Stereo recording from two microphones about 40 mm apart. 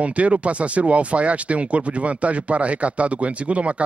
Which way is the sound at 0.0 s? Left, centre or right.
Right.